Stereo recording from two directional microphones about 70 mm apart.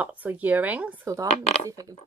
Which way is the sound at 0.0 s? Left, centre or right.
Right.